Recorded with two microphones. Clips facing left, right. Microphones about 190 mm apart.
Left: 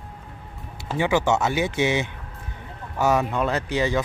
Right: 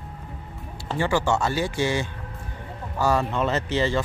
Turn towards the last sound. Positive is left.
turn(degrees=15)  # may be behind; listen again after turning